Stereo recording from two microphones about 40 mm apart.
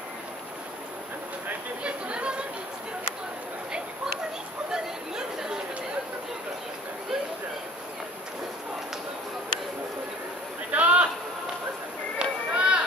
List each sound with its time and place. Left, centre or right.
1.8 s chatter: right
4.7 s chatter: centre
10.7 s a sound: right
12.2 s run: right